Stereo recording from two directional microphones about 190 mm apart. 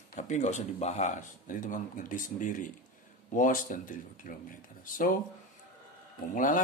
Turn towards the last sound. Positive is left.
turn(degrees=45)  # may be behind; listen again after turning